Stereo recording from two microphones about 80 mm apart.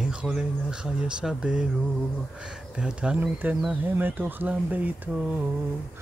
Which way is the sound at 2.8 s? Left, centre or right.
Centre.